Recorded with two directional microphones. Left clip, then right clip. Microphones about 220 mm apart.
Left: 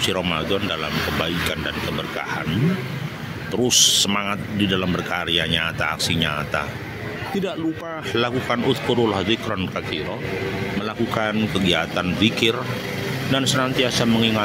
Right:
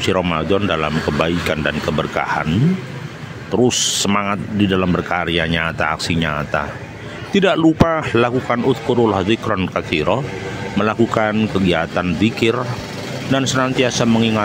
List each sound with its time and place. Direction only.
0.0 s speech: 20° right (ahead or behind)
3.5 s speech: 20° right (ahead or behind)
7.3 s speech: 35° right (ahead or behind)
8.1 s speech: 20° right (ahead or behind)